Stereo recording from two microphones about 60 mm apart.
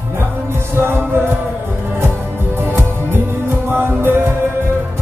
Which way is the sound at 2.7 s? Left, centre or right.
Right.